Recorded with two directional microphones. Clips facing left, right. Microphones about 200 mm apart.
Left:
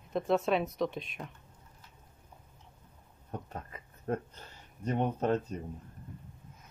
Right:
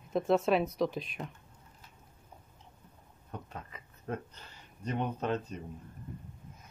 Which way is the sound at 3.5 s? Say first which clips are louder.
Left 2 dB; 40° left (ahead or behind).